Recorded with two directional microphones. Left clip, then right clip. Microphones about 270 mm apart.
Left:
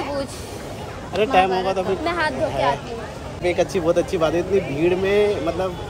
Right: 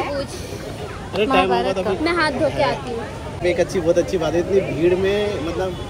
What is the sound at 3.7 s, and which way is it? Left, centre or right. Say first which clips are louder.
Speech: right 1 dB; centre.